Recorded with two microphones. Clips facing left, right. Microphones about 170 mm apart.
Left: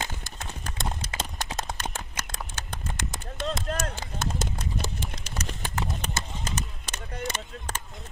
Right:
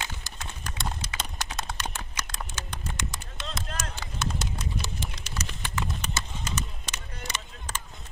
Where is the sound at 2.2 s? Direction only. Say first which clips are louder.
Even; 50° left (ahead or behind).